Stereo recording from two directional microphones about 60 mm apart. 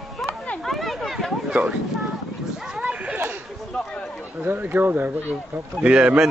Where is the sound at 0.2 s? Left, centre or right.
Centre.